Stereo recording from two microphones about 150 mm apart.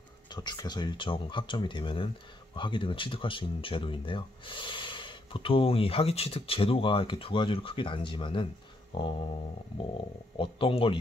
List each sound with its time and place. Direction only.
0.3 s speech: 30° left (ahead or behind)
10.3 s speech: 35° left (ahead or behind)